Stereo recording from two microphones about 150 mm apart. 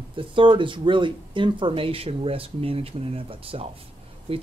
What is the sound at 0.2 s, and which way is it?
Speech, 35° right (ahead or behind).